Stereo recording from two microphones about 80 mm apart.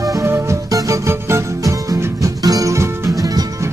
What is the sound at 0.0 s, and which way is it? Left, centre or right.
Music, right.